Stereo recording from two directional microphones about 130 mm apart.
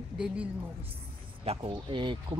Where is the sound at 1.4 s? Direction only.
40° right (ahead or behind).